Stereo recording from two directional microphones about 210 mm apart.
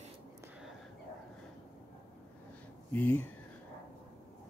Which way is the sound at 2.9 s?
10° left (ahead or behind).